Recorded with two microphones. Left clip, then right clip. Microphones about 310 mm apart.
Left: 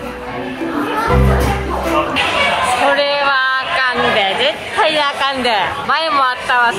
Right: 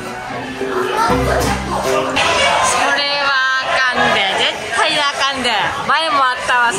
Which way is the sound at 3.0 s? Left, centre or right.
Centre.